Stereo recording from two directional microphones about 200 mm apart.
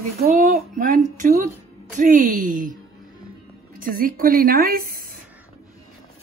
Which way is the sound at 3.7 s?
45° right (ahead or behind).